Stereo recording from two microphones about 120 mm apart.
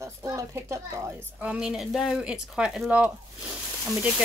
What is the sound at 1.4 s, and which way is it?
Speech, 10° right (ahead or behind).